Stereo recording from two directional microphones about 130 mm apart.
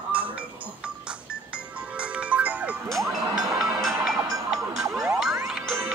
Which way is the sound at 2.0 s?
10° right (ahead or behind).